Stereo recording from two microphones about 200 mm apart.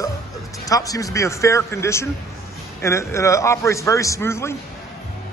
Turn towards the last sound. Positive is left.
turn(degrees=15)  # may be behind; listen again after turning